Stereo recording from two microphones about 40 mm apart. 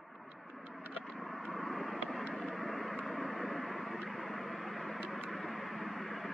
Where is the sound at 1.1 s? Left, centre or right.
Centre.